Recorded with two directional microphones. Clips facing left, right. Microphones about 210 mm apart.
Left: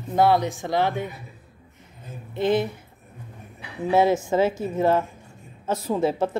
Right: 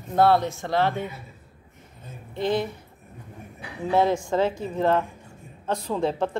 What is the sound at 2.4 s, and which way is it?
Speech, 20° left (ahead or behind).